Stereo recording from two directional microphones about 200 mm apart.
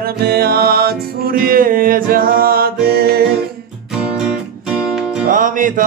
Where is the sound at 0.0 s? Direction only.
50° right (ahead or behind).